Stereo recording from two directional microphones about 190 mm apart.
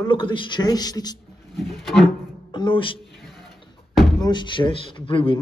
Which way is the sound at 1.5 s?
Centre (ahead or behind).